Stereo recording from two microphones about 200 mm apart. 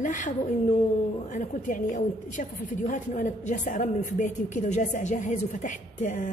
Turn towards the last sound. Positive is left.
turn(degrees=40)  # may be behind; listen again after turning